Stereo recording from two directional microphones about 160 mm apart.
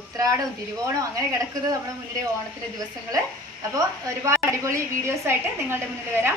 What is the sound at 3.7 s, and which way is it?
A woman's voice, 20° right (ahead or behind).